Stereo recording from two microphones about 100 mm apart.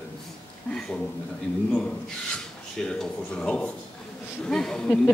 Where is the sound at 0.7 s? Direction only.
10° left (ahead or behind).